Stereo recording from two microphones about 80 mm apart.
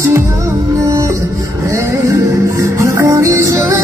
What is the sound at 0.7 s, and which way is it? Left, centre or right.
Music, right.